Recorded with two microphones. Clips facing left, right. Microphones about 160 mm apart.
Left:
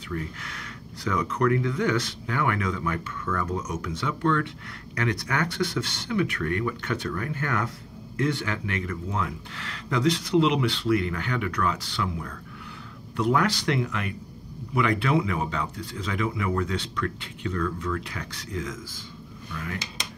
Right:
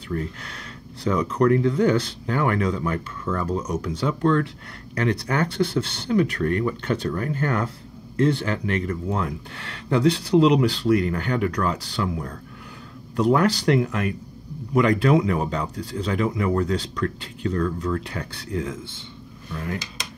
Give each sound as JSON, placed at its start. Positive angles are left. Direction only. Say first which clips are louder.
{"t": 0.1, "sound": "speech", "louder": "right 4 dB", "side_deg": -35}